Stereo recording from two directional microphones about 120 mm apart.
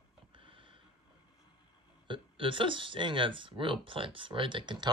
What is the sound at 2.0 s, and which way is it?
Speech, 45° right (ahead or behind).